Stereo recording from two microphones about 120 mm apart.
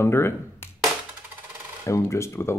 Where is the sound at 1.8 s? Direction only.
25° left (ahead or behind).